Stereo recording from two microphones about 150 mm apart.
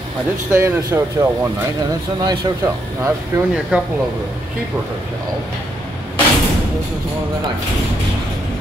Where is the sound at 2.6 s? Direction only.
15° right (ahead or behind).